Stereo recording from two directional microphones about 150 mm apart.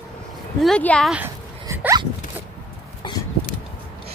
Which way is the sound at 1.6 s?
20° right (ahead or behind).